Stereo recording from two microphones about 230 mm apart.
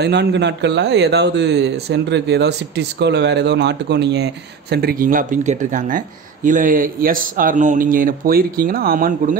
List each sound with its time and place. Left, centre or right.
0.0 s speech: right